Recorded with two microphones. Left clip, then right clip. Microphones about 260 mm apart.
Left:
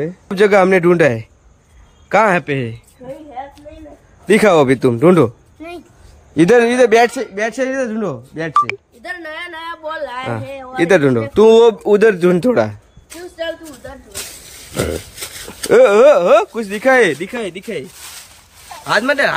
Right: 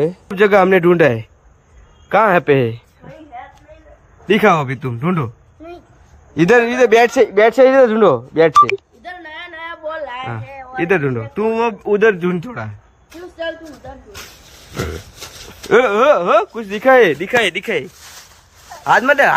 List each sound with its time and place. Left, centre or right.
0.3 s speech: centre
4.3 s speech: left
6.3 s speech: centre
7.2 s speech: centre
9.0 s a sound: centre
10.8 s speech: left
14.7 s a sound: left
15.7 s speech: left; by 17.8 s centre
18.9 s speech: centre